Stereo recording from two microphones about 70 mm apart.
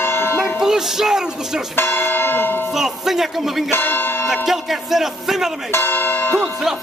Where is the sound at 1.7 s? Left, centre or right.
Left.